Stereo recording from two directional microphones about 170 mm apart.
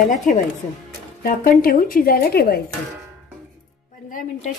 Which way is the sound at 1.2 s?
60° left (ahead or behind).